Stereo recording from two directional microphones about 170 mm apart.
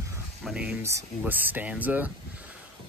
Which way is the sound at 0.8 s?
15° right (ahead or behind).